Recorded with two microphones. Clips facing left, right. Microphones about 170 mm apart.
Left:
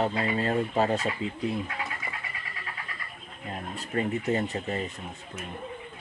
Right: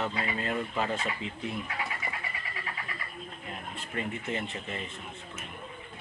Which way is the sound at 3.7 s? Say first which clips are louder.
Left 7 dB; 40° left (ahead or behind).